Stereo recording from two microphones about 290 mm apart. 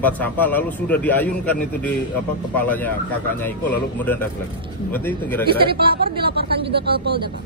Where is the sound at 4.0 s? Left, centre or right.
Centre.